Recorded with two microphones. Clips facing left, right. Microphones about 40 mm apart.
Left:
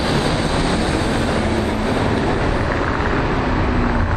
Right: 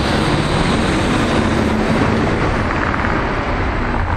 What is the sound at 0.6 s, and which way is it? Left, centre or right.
Vehicle, right.